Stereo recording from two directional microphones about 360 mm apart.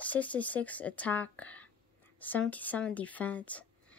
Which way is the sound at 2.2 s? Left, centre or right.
Centre.